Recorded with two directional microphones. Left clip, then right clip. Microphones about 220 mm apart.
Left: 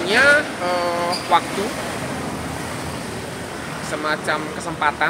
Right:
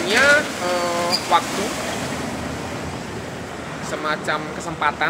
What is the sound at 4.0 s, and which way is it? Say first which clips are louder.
Speech: left 1 dB; 10° left (ahead or behind).